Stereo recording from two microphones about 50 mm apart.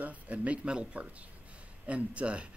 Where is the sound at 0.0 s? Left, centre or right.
Right.